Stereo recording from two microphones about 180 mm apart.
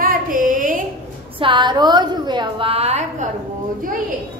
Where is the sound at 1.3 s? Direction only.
25° right (ahead or behind).